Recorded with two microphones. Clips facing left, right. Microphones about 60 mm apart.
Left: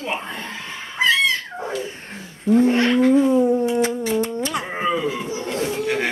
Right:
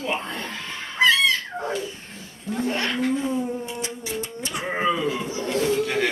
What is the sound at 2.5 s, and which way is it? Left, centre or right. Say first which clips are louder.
Speech: left 10 dB; left.